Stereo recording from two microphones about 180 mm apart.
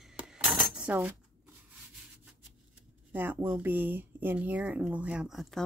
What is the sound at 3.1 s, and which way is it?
Speech, 10° right (ahead or behind).